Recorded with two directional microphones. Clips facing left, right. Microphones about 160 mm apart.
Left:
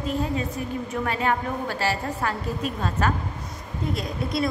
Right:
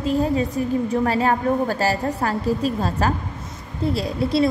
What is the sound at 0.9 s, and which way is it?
A woman's voice, 35° right (ahead or behind).